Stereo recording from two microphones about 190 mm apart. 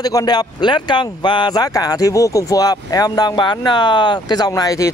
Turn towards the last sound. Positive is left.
turn(degrees=20)  # may be behind; listen again after turning